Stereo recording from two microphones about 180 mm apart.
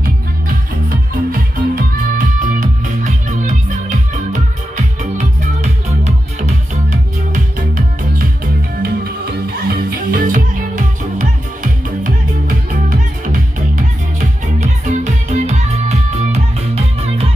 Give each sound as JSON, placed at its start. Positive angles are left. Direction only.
{"t": 0.8, "sound": "music", "side_deg": -55}
{"t": 8.8, "sound": "music", "side_deg": -55}